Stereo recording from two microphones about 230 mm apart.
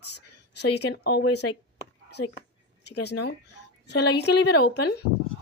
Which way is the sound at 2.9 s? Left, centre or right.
Left.